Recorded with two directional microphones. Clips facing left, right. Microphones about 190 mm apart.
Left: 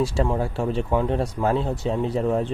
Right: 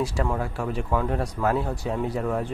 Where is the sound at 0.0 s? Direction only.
25° left (ahead or behind).